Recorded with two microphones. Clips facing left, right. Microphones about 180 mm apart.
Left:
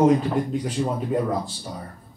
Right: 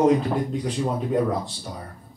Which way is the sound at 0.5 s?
Centre (ahead or behind).